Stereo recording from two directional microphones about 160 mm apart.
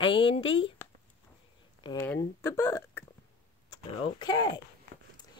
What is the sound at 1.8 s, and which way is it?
Speech, 25° left (ahead or behind).